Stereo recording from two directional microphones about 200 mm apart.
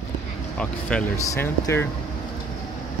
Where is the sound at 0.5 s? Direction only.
10° left (ahead or behind).